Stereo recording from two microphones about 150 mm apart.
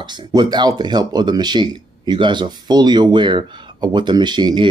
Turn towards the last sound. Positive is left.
turn(degrees=-30)  # may be behind; listen again after turning